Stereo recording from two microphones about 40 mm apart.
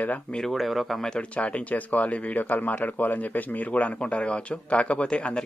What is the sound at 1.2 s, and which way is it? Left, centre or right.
Speech, left.